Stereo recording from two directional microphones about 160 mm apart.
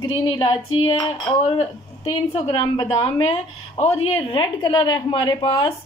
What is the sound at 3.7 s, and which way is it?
A woman's voice, 40° left (ahead or behind).